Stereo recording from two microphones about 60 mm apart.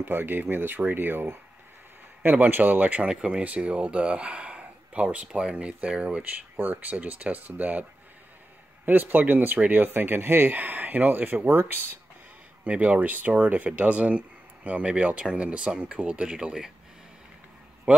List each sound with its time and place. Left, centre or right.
0.0 s speech: right
8.8 s speech: right
12.6 s speech: right